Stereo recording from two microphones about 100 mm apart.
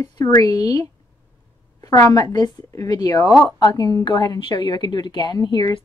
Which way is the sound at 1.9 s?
35° left (ahead or behind).